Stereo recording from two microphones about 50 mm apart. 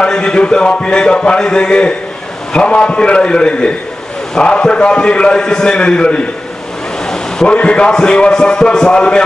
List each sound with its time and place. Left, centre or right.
0.0 s speech: centre
7.1 s a sound: centre
7.5 s a man's voice: left